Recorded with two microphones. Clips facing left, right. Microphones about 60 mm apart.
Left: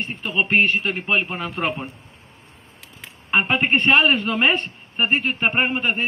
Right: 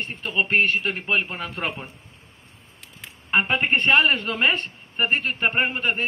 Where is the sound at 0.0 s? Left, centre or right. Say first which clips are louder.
Left 2 dB; centre.